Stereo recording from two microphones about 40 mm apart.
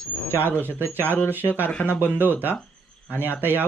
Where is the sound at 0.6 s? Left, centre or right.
Right.